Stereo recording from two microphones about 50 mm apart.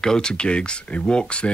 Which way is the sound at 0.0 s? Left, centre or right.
Centre.